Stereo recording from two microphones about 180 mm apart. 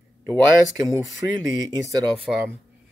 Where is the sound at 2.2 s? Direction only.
10° right (ahead or behind).